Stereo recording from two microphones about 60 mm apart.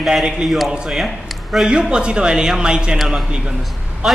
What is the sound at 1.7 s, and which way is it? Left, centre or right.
Speech, centre.